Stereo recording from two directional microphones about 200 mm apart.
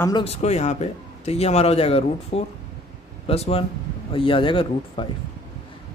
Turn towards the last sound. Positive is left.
turn(degrees=25)  # may be behind; listen again after turning